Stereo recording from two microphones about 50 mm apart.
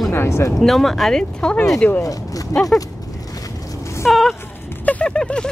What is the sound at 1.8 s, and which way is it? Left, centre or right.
Speech, left.